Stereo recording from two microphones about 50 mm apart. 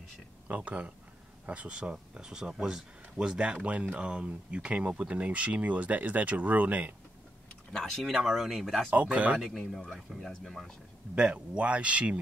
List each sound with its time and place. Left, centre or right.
0.5 s speech: right
7.8 s speech: centre
8.9 s speech: right
9.4 s speech: centre
11.1 s speech: right